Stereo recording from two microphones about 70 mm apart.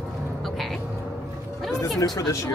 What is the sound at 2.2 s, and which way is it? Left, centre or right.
Speech, left.